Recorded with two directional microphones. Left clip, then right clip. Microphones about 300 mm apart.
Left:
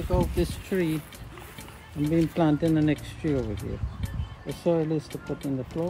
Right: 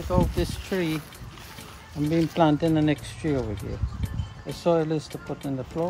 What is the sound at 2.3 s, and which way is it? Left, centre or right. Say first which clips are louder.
Speech: right 3 dB; right.